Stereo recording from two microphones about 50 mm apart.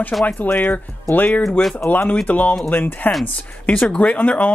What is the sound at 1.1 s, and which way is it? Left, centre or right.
Speech, left.